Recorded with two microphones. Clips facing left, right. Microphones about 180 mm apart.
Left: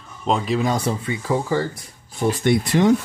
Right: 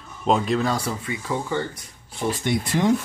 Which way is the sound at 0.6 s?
20° left (ahead or behind).